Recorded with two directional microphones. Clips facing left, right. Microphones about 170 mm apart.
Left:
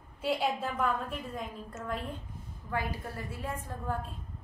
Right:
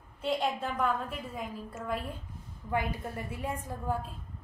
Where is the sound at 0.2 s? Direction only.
5° left (ahead or behind).